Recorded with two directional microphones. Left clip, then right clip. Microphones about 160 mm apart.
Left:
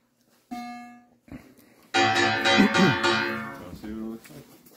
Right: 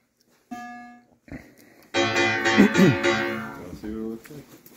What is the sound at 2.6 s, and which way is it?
Music, 15° left (ahead or behind).